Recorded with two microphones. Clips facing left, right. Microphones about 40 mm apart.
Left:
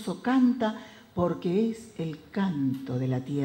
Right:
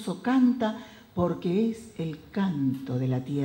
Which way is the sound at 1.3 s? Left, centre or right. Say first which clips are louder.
Even; centre.